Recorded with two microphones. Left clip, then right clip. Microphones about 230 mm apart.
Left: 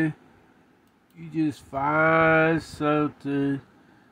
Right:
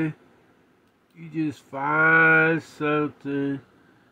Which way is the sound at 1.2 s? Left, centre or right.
Centre.